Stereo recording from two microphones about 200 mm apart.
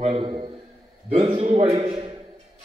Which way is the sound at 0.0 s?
25° right (ahead or behind).